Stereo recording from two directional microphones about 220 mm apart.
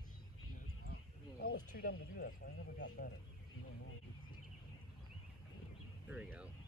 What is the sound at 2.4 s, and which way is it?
Speech, 45° left (ahead or behind).